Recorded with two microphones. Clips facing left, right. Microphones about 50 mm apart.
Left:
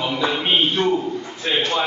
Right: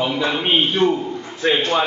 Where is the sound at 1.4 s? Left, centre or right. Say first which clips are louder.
Right 4 dB; right.